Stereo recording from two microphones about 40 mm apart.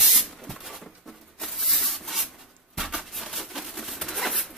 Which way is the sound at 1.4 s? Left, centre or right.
Centre.